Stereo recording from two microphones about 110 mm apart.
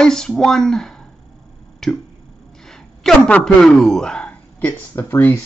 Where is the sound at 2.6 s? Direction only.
5° left (ahead or behind).